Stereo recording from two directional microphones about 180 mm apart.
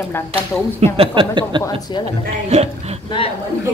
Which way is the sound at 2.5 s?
35° right (ahead or behind).